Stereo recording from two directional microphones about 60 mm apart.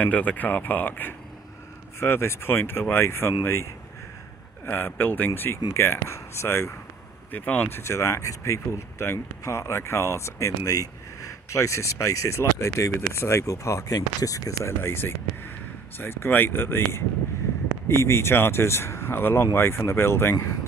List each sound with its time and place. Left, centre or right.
0.0 s speech: left
2.0 s speech: left
4.6 s speech: left
7.3 s speech: left
7.7 s speech: left
10.6 s speech: left
14.8 s speech: left